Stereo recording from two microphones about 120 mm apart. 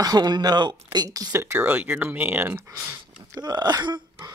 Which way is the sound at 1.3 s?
20° right (ahead or behind).